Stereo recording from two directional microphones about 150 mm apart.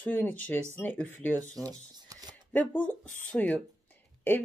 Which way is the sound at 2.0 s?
25° right (ahead or behind).